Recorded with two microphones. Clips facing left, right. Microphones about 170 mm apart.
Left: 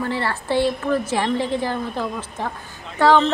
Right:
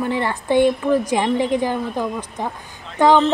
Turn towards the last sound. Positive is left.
turn(degrees=-15)  # may be behind; listen again after turning